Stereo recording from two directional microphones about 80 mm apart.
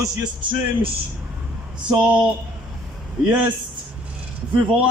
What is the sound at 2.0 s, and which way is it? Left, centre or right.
Speech, centre.